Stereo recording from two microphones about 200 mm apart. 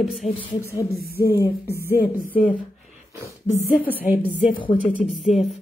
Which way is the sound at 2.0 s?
45° left (ahead or behind).